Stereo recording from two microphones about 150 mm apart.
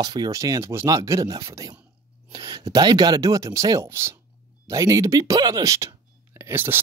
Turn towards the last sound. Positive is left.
turn(degrees=-15)  # may be behind; listen again after turning